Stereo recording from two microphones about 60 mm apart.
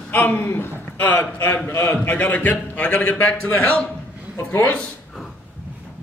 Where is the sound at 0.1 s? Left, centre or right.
Left.